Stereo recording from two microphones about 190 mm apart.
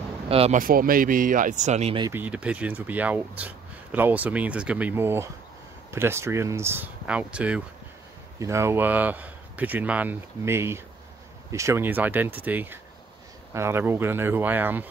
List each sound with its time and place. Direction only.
0.3 s speech: 30° right (ahead or behind)
0.6 s speech: 50° right (ahead or behind)
2.0 s speech: 15° right (ahead or behind)